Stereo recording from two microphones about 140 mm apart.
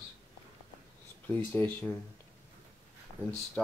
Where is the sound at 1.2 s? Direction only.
15° left (ahead or behind).